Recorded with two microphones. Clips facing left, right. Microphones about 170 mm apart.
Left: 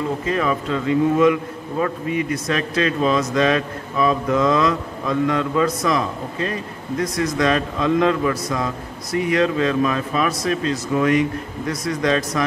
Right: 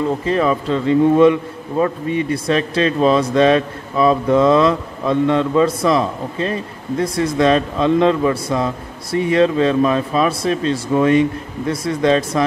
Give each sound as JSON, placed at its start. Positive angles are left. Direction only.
{"t": 0.2, "sound": "a man's voice", "side_deg": -30}